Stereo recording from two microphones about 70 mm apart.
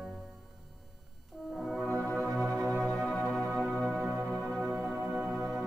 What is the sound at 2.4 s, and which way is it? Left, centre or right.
Organ, right.